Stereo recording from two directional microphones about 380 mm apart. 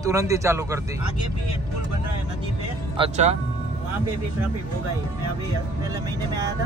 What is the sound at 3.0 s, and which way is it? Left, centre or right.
Speech, centre.